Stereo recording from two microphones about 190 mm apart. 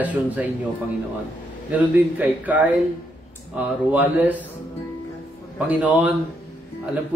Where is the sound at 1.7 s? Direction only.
10° right (ahead or behind).